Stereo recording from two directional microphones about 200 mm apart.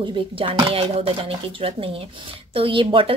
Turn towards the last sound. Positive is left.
turn(degrees=-25)  # may be behind; listen again after turning